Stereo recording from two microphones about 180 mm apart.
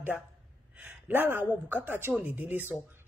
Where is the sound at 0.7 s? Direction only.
10° right (ahead or behind).